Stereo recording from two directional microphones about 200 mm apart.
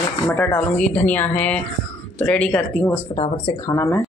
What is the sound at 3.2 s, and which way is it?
Speech, 25° left (ahead or behind).